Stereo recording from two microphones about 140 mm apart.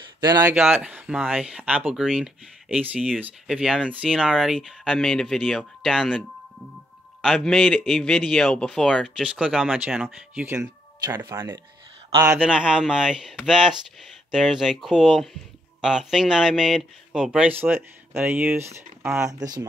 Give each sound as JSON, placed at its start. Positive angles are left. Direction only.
{"t": 0.2, "sound": "a man's voice", "side_deg": -25}
{"t": 7.2, "sound": "a man's voice", "side_deg": 0}